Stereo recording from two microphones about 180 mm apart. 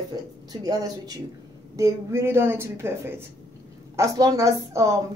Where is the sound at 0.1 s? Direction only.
20° right (ahead or behind).